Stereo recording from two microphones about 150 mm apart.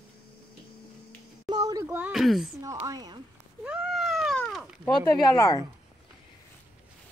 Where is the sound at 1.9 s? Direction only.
5° right (ahead or behind).